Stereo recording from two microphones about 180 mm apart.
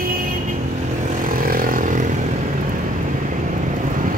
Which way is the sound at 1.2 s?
55° right (ahead or behind).